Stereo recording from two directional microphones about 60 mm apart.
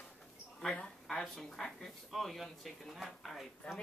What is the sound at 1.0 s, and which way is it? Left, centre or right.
Speech, centre.